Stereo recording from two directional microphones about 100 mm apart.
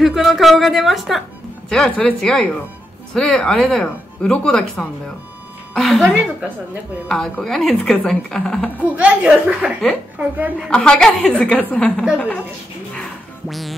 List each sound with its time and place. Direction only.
0.0 s a woman's voice: centre (ahead or behind)
7.1 s a woman's voice: 5° left (ahead or behind)
8.8 s a woman's voice: 15° right (ahead or behind)
10.7 s speech: 5° left (ahead or behind)
13.5 s a woman's voice: centre (ahead or behind)